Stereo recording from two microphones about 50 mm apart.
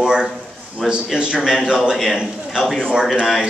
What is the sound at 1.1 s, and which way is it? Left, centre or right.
A man's voice, centre.